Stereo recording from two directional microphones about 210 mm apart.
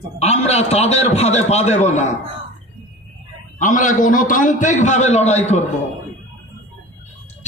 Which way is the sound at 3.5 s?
35° left (ahead or behind).